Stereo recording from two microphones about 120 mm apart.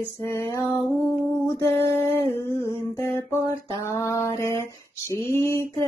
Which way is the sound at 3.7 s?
25° left (ahead or behind).